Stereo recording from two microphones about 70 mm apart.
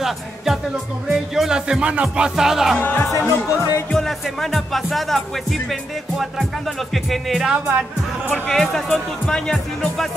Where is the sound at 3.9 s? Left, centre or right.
Centre.